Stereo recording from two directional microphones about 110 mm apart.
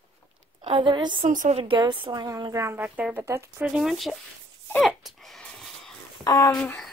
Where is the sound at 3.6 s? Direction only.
5° right (ahead or behind).